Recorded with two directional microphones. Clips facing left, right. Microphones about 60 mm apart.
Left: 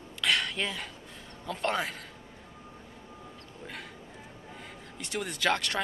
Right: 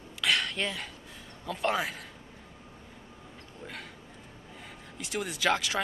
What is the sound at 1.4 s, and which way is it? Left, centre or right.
Speech, centre.